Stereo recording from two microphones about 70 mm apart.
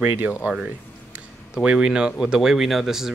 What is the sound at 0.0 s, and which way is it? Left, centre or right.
Speech, right.